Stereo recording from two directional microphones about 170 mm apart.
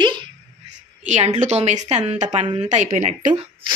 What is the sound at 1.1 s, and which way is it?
A woman's voice, 45° right (ahead or behind).